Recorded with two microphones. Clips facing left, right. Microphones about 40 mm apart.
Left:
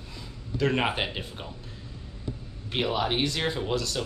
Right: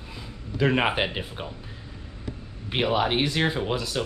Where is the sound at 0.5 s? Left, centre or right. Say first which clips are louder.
Right 3 dB; centre.